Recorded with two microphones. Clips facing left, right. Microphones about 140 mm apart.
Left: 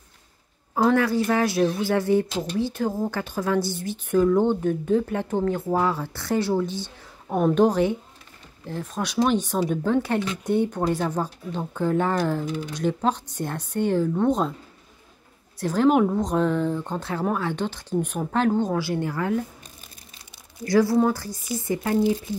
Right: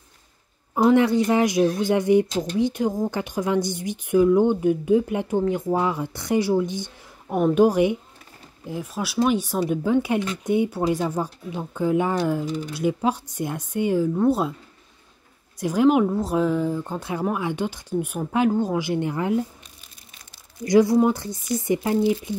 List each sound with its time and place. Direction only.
0.8 s a woman's voice: 20° right (ahead or behind)
15.6 s a woman's voice: 10° right (ahead or behind)
20.6 s a woman's voice: 15° right (ahead or behind)